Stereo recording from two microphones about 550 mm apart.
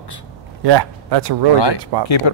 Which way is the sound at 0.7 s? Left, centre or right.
Right.